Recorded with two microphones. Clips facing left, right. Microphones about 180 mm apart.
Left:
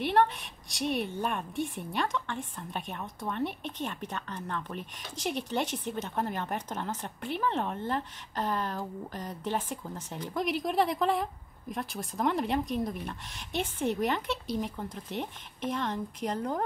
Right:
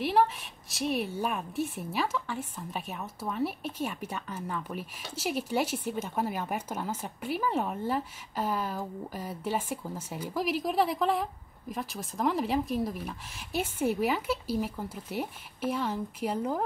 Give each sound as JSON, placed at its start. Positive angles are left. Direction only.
{"t": 0.0, "sound": "a woman's voice", "side_deg": 0}